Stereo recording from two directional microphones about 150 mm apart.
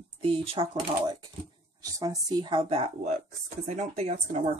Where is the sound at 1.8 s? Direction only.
25° right (ahead or behind); by 4.4 s 50° right (ahead or behind).